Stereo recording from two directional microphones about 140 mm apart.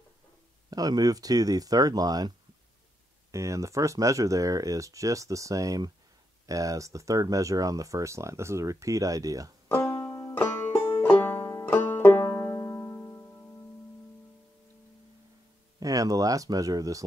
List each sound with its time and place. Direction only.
0.7 s speech: 25° right (ahead or behind)
9.8 s banjo: 25° left (ahead or behind)
15.8 s speech: 25° right (ahead or behind)